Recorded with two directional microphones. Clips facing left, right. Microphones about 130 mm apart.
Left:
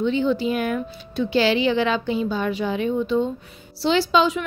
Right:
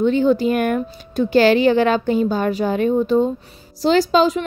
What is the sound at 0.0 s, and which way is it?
A woman's voice, 45° right (ahead or behind).